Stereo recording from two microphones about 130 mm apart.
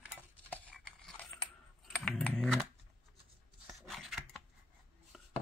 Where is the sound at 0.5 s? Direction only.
10° left (ahead or behind).